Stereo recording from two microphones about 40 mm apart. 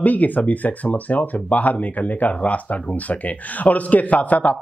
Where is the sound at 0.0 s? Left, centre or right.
Left.